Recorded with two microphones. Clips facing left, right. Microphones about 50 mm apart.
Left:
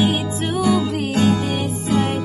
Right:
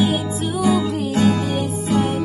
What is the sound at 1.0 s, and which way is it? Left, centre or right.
Music, left.